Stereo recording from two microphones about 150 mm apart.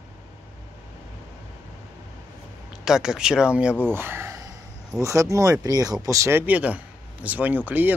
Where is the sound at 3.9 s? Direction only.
15° right (ahead or behind).